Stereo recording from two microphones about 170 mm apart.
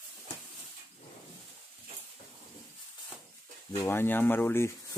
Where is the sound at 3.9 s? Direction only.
15° left (ahead or behind).